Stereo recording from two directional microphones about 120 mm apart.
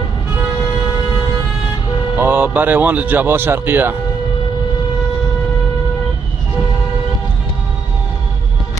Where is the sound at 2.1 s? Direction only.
15° right (ahead or behind).